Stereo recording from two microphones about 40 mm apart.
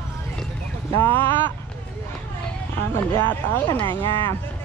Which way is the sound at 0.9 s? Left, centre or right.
Left.